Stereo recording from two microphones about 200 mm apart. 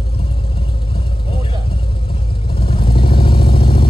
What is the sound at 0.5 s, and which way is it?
Vehicle, 25° left (ahead or behind).